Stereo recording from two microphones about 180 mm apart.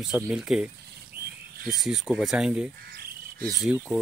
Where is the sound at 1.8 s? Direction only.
Centre (ahead or behind).